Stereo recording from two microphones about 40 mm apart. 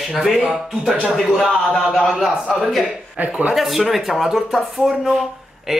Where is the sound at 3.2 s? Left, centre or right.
Right.